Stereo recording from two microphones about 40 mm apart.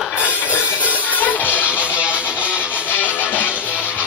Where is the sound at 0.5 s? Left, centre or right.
Left.